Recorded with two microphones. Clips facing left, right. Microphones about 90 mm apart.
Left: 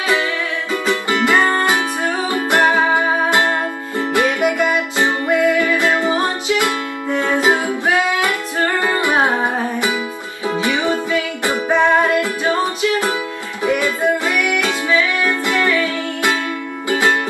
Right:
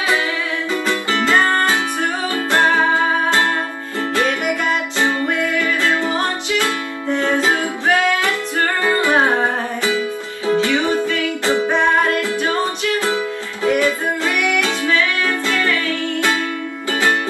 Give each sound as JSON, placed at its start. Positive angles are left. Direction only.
{"t": 0.8, "sound": "music", "side_deg": 15}
{"t": 13.0, "sound": "music", "side_deg": 20}